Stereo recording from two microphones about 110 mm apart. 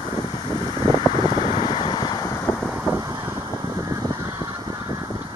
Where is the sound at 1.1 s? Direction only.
50° right (ahead or behind).